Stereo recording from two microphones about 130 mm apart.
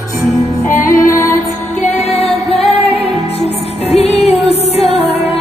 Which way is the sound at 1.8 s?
55° left (ahead or behind).